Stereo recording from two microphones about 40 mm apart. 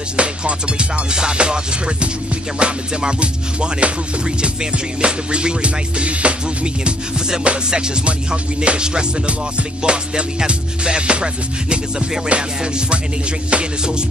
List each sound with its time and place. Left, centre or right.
0.2 s music: right
5.0 s music: right
12.3 s music: right